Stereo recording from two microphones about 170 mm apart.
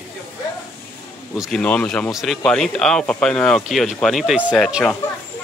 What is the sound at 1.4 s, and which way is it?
Speech, 5° left (ahead or behind).